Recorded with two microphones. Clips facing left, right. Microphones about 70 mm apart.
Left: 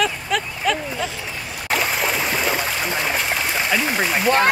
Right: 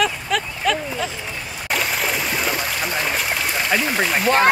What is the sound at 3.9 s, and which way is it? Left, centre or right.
Speech, centre.